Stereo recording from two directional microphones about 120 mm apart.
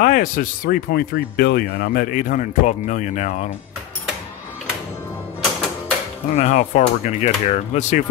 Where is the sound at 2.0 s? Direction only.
90° left.